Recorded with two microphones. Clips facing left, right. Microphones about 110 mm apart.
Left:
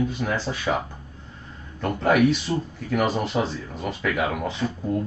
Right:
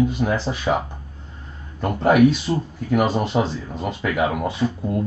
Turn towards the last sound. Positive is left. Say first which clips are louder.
# right 3 dB
turn(degrees=-15)  # may be behind; listen again after turning